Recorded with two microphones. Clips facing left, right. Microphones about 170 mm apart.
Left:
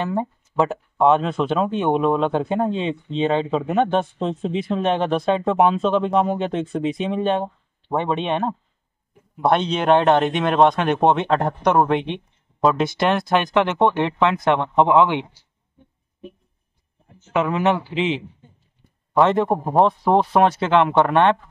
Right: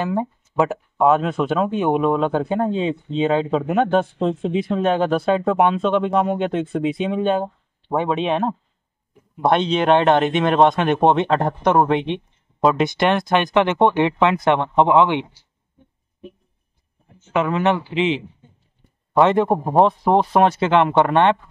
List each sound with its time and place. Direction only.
0.0 s speech: 5° right (ahead or behind)
17.3 s speech: 5° left (ahead or behind)
19.1 s speech: 5° right (ahead or behind)